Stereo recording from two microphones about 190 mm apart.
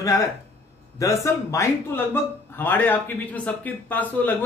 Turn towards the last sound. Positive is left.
turn(degrees=10)  # may be behind; listen again after turning